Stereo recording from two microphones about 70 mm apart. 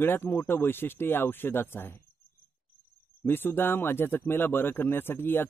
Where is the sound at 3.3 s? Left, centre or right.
Left.